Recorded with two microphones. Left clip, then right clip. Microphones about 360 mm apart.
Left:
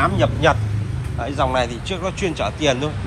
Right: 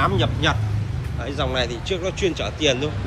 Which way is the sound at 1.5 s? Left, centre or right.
Centre.